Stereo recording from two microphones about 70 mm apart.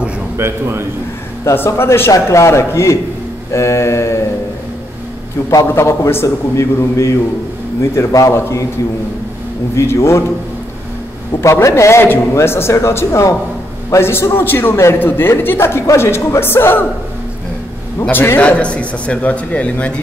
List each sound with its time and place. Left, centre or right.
0.4 s a man's voice: right
1.4 s a man's voice: left
5.7 s a man's voice: left
9.8 s a man's voice: left
11.4 s a man's voice: left
18.1 s a man's voice: left
18.4 s speech: centre